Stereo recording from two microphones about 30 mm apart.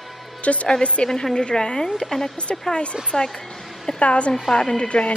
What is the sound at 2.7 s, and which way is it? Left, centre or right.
A woman's voice, left.